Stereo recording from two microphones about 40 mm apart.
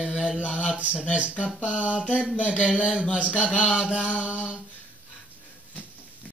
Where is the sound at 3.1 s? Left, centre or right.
Right.